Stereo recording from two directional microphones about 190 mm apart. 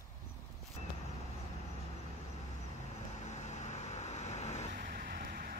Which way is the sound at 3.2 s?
35° left (ahead or behind).